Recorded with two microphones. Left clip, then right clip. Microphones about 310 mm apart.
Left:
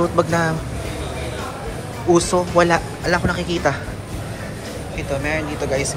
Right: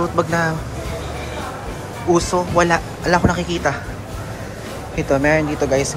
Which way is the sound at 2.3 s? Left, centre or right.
Centre.